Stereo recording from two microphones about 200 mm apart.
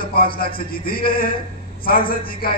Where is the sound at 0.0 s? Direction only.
45° left (ahead or behind).